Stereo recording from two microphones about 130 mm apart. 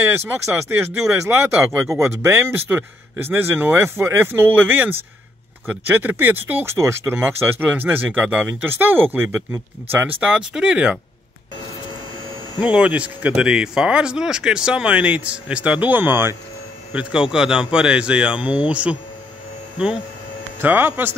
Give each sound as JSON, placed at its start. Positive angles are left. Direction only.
{"t": 0.0, "sound": "speech", "side_deg": -15}
{"t": 12.5, "sound": "speech", "side_deg": -10}
{"t": 20.6, "sound": "speech", "side_deg": -15}